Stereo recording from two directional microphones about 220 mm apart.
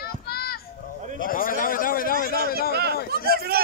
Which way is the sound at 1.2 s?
40° left (ahead or behind).